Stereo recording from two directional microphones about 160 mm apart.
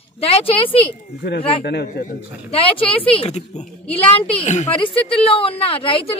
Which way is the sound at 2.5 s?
35° left (ahead or behind).